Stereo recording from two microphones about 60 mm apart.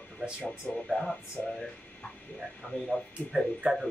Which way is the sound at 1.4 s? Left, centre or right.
Left.